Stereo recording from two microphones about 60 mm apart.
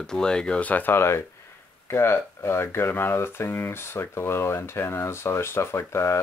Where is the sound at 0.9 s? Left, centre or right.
Left.